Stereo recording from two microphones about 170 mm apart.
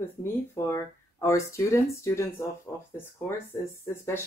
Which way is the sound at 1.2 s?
15° left (ahead or behind).